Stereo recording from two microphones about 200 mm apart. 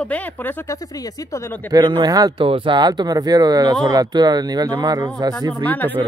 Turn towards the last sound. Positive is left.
turn(degrees=10)  # may be behind; listen again after turning